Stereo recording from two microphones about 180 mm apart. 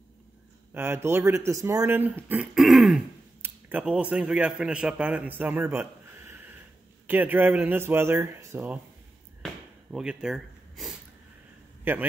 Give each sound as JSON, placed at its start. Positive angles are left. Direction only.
{"t": 0.7, "sound": "speech", "side_deg": -10}
{"t": 9.4, "sound": "a sound", "side_deg": -5}
{"t": 11.8, "sound": "a man's voice", "side_deg": -10}